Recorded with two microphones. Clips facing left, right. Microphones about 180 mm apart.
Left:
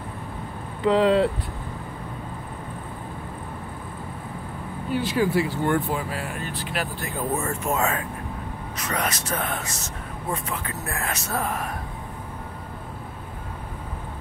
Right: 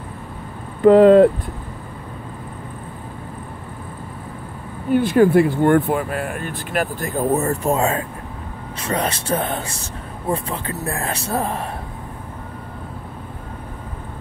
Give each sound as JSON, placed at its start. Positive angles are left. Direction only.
{"t": 0.8, "sound": "speech", "side_deg": -50}
{"t": 4.9, "sound": "speech", "side_deg": -55}